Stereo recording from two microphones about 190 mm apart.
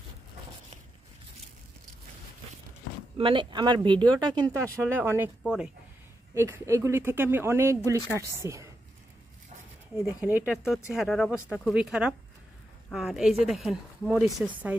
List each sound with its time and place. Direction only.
3.2 s a woman's voice: 25° right (ahead or behind); by 5.7 s 5° right (ahead or behind)
6.3 s speech: 15° right (ahead or behind)
9.9 s a woman's voice: 10° right (ahead or behind)